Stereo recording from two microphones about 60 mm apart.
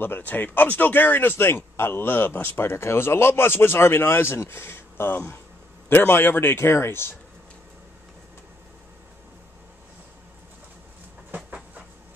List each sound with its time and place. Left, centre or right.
0.0 s speech: left
11.3 s train: right